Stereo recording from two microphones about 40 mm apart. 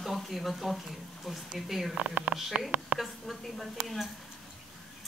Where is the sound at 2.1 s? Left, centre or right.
Right.